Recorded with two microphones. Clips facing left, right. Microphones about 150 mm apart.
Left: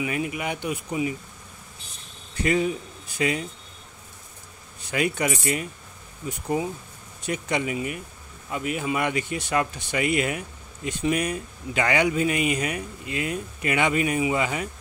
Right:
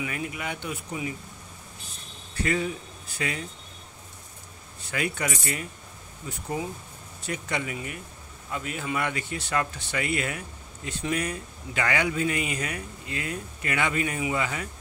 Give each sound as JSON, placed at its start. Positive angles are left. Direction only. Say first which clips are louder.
{"t": 0.0, "sound": "speech", "louder": "left 5 dB", "side_deg": 15}
{"t": 2.4, "sound": "speech", "louder": "left 4 dB", "side_deg": 20}
{"t": 4.9, "sound": "speech", "louder": "left 5 dB", "side_deg": 20}
{"t": 7.2, "sound": "speech", "louder": "left 5 dB", "side_deg": 20}